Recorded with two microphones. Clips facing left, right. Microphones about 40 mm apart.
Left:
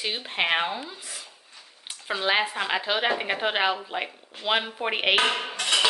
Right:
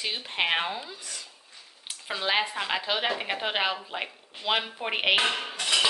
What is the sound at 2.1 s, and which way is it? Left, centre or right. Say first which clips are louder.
A woman's voice: left 3 dB; centre.